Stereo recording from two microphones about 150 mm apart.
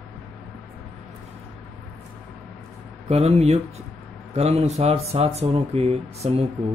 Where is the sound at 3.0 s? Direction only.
45° right (ahead or behind).